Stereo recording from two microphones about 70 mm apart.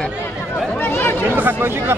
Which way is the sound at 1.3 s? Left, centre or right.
Right.